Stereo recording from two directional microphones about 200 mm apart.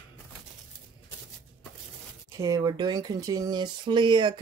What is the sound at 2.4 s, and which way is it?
Speech, 15° right (ahead or behind).